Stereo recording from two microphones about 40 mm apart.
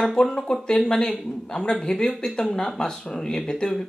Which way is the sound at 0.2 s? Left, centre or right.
Centre.